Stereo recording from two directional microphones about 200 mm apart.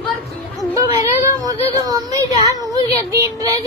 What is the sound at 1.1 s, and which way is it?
Speech, 15° right (ahead or behind).